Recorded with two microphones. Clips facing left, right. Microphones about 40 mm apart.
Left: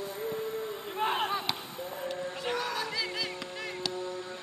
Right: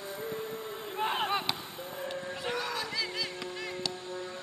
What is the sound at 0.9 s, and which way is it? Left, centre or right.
Chop, centre.